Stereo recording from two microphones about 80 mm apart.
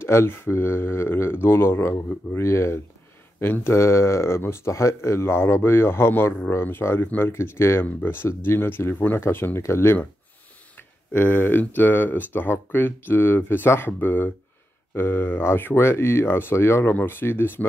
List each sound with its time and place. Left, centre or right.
0.0 s speech: left
11.1 s speech: left